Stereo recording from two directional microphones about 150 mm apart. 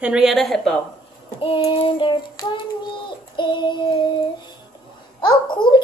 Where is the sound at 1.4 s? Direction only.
35° left (ahead or behind).